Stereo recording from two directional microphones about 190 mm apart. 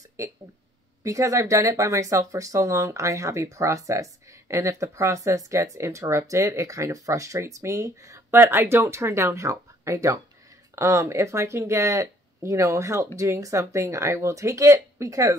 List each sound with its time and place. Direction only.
0.2 s speech: 15° right (ahead or behind)